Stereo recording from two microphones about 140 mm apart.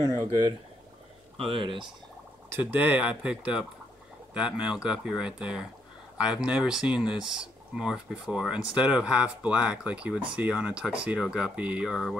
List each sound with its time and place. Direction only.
1.4 s speech: 40° right (ahead or behind)
2.5 s speech: 10° right (ahead or behind)